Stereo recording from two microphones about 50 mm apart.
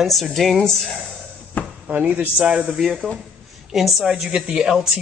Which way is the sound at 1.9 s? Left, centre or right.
Right.